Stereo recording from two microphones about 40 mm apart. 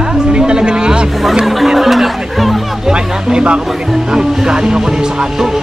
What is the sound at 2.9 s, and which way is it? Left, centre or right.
Speech, right.